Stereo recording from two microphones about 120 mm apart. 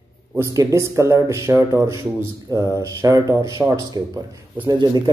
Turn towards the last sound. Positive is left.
turn(degrees=-35)  # may be behind; listen again after turning